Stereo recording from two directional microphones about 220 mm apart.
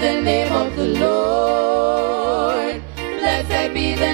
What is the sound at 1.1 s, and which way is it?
Music, 25° right (ahead or behind).